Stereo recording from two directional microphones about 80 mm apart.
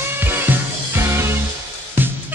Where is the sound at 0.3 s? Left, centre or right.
Right.